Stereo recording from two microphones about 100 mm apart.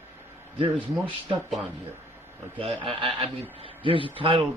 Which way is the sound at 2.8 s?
65° right (ahead or behind).